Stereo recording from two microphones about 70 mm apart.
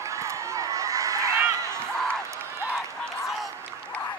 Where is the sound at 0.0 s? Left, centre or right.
Right.